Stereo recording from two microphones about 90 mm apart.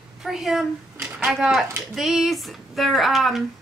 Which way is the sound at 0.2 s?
5° right (ahead or behind).